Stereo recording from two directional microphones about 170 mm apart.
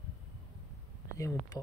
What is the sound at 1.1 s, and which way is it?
Speech, 20° left (ahead or behind).